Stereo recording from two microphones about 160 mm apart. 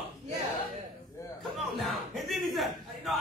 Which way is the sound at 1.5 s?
Centre (ahead or behind).